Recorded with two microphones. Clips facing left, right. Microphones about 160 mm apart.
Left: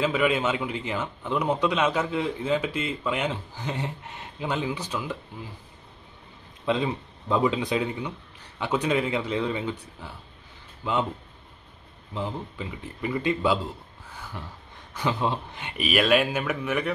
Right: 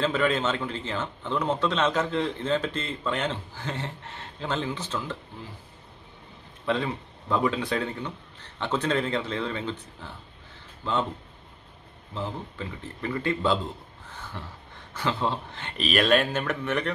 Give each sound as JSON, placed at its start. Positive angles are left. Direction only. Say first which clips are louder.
{"t": 0.0, "sound": "a man's voice", "louder": "left 1 dB", "side_deg": 10}
{"t": 6.6, "sound": "a man's voice", "louder": "left 2 dB", "side_deg": 15}
{"t": 12.1, "sound": "a man's voice", "louder": "left 2 dB", "side_deg": 15}